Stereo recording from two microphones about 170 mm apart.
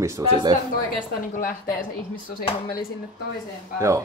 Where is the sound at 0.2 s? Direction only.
20° right (ahead or behind).